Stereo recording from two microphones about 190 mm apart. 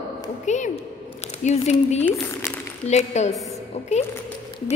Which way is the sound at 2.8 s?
35° left (ahead or behind).